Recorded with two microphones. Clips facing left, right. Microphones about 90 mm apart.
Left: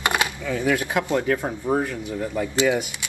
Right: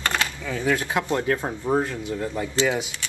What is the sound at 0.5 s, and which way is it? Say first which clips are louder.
Speech: left 1 dB; 15° left (ahead or behind).